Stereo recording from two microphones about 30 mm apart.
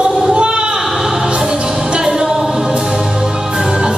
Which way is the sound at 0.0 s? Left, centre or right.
Right.